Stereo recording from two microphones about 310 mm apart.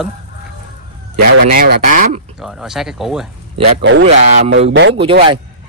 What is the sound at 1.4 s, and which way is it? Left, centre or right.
Speech, right.